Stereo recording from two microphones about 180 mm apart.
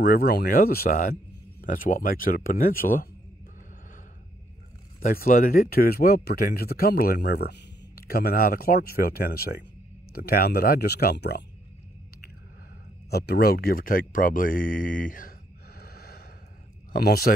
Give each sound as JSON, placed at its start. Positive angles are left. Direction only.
{"t": 0.0, "sound": "speech", "side_deg": 55}
{"t": 5.0, "sound": "speech", "side_deg": 55}
{"t": 13.1, "sound": "speech", "side_deg": 60}